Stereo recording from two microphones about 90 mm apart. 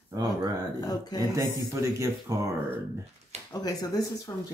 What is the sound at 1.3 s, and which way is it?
Speech, 35° right (ahead or behind).